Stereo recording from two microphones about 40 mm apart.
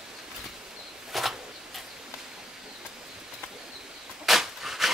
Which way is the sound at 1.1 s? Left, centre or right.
Centre.